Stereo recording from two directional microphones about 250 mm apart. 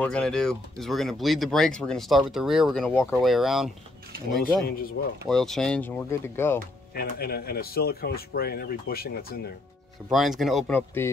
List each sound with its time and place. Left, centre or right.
0.0 s speech: centre
4.6 s speech: left
5.3 s speech: centre
7.0 s speech: left
10.1 s speech: centre